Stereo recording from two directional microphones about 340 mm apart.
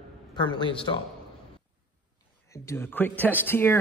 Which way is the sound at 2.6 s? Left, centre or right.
Centre.